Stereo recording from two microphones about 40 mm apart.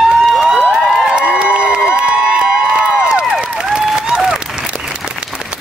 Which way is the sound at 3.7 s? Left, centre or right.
Right.